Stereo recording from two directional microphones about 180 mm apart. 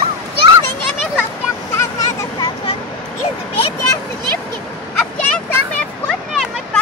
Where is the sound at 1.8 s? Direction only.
20° left (ahead or behind).